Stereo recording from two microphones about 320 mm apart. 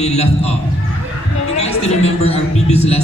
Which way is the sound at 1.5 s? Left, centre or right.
Centre.